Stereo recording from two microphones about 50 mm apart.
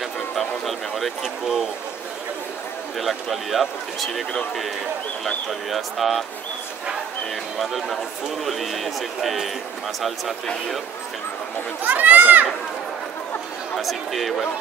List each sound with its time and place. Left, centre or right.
0.4 s a sound: centre
1.2 s speech: centre
3.0 s speech: centre
7.5 s speech: centre
11.8 s speech: right
13.7 s speech: centre